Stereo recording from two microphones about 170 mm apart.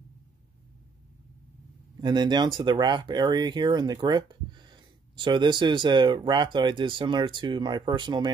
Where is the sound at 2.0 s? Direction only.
25° right (ahead or behind).